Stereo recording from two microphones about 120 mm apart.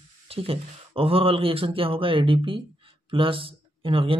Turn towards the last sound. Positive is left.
turn(degrees=-50)  # may be behind; listen again after turning